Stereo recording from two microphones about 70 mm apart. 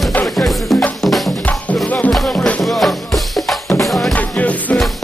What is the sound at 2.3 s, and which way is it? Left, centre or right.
Music, centre.